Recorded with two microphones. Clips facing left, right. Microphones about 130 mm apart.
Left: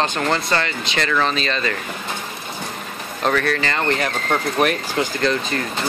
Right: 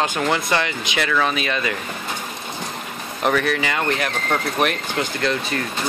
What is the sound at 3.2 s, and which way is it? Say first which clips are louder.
Speech: even; 15° right (ahead or behind).